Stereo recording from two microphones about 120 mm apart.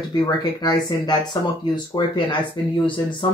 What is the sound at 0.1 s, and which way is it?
Speech, 35° left (ahead or behind).